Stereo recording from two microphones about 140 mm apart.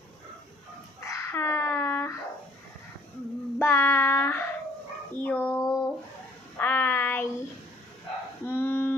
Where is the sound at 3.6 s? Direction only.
15° left (ahead or behind).